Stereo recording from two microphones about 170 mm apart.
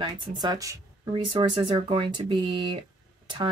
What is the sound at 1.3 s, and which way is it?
Speech, 30° right (ahead or behind).